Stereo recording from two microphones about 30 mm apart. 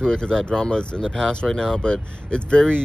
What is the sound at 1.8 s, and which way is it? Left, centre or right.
Speech, left.